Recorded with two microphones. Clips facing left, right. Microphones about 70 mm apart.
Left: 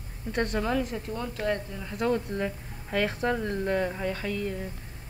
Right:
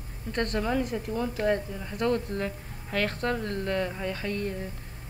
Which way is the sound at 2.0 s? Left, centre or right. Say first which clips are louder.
Even; centre.